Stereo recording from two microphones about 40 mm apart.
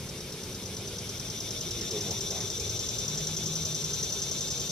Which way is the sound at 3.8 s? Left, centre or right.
Centre.